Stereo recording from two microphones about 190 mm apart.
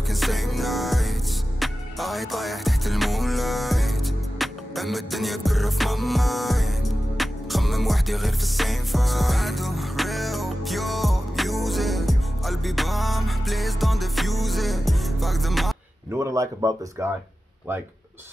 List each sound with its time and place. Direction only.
0.1 s music: centre (ahead or behind)
16.1 s a man's voice: 15° right (ahead or behind)